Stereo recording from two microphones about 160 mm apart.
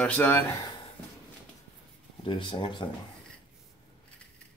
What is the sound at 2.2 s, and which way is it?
Speech, 30° left (ahead or behind).